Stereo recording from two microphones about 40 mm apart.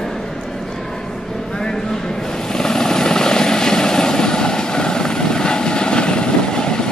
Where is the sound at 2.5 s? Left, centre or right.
Centre.